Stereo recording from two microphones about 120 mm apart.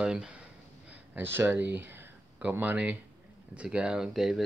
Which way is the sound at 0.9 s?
20° right (ahead or behind).